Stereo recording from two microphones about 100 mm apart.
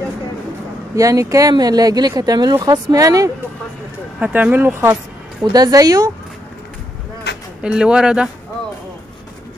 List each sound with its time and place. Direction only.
0.9 s speech: 35° right (ahead or behind)
4.2 s speech: 15° right (ahead or behind)
5.4 s speech: 40° right (ahead or behind)
7.6 s speech: 10° right (ahead or behind)